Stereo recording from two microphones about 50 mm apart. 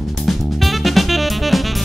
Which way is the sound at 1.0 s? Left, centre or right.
Centre.